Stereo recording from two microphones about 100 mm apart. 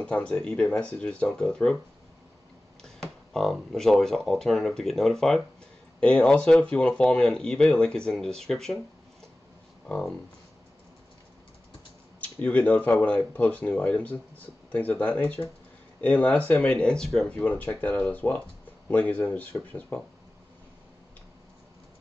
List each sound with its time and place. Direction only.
0.0 s speech: 10° left (ahead or behind)
3.3 s speech: 5° left (ahead or behind)
9.8 s speech: 10° left (ahead or behind)
12.2 s speech: 15° left (ahead or behind)